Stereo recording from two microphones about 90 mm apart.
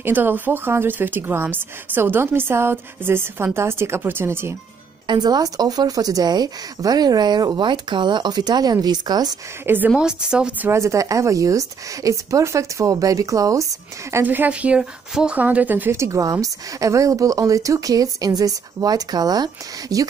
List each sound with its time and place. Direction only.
0.0 s speech: 20° right (ahead or behind)
5.0 s speech: 55° right (ahead or behind)
9.8 s speech: 10° right (ahead or behind)
10.7 s a woman's voice: 35° right (ahead or behind)
14.2 s a woman's voice: 20° right (ahead or behind); by 20.1 s 45° right (ahead or behind)